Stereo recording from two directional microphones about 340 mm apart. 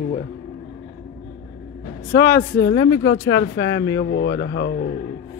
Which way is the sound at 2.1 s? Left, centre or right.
Left.